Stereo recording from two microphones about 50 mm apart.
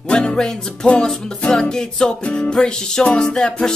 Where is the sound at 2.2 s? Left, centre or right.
Left.